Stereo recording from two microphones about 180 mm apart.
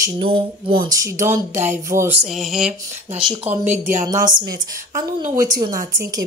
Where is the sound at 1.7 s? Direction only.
15° right (ahead or behind).